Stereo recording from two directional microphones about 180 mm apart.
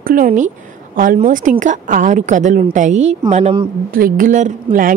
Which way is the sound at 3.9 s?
50° right (ahead or behind).